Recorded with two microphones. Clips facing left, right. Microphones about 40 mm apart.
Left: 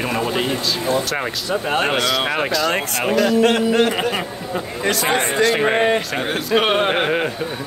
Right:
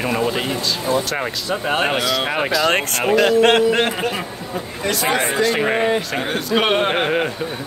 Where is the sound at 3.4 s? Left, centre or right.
Right.